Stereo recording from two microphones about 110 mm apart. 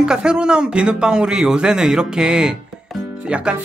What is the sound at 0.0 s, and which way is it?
Speech, 5° right (ahead or behind).